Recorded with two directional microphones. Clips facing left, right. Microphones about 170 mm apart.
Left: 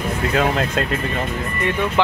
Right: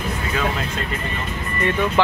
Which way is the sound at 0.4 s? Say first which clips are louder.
Left 6 dB; 55° left (ahead or behind).